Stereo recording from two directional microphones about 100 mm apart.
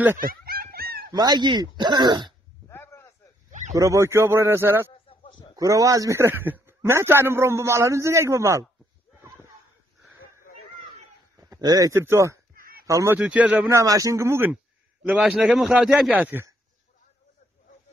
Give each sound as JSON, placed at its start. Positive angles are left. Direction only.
{"t": 1.1, "sound": "speech", "side_deg": -40}
{"t": 2.7, "sound": "a sound", "side_deg": 25}
{"t": 3.7, "sound": "a man's voice", "side_deg": -30}
{"t": 5.6, "sound": "a man's voice", "side_deg": -35}
{"t": 11.4, "sound": "a sound", "side_deg": -40}
{"t": 11.9, "sound": "a man's voice", "side_deg": -25}
{"t": 13.1, "sound": "a man's voice", "side_deg": -10}
{"t": 13.7, "sound": "a man's voice", "side_deg": -30}
{"t": 15.0, "sound": "a man's voice", "side_deg": -10}